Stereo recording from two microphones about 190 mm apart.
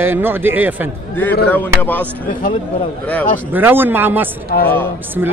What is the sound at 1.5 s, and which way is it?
Speech, 10° left (ahead or behind).